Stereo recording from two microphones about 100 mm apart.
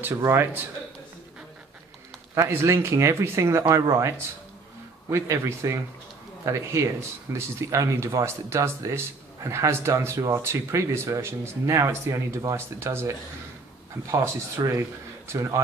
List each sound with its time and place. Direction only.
0.0 s speech: 30° right (ahead or behind)
2.3 s speech: 30° right (ahead or behind)
5.1 s speech: 30° right (ahead or behind)
14.1 s speech: 35° right (ahead or behind)